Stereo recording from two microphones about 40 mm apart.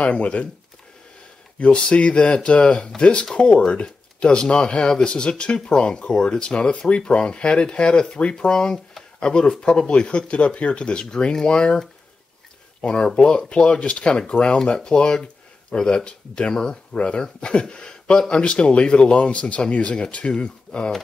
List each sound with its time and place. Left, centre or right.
0.0 s speech: left
1.6 s speech: left
12.8 s speech: centre